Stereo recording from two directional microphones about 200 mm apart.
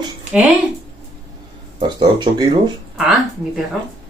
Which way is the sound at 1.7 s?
20° right (ahead or behind).